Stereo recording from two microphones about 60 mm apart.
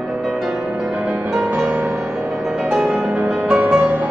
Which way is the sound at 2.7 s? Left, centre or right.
Centre.